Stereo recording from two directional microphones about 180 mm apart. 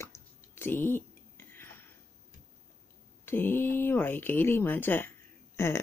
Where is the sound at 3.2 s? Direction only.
10° left (ahead or behind).